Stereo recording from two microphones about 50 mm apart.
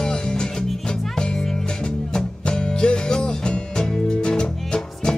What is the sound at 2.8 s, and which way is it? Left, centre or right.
Music, centre.